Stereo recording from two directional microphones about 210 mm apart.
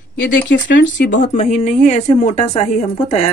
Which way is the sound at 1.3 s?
35° left (ahead or behind).